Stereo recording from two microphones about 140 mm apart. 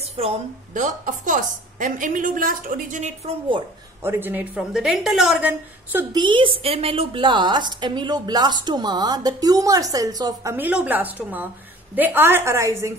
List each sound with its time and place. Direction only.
0.2 s a woman's voice: 45° right (ahead or behind)
0.7 s a woman's voice: 65° right (ahead or behind)
3.3 s a woman's voice: 35° right (ahead or behind)
4.0 s a woman's voice: 15° right (ahead or behind)
4.7 s a woman's voice: 5° right (ahead or behind)
6.1 s a woman's voice: 35° right (ahead or behind)
10.5 s a woman's voice: 10° right (ahead or behind)